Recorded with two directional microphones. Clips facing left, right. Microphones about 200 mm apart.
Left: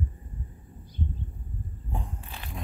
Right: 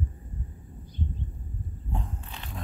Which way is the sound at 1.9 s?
10° left (ahead or behind).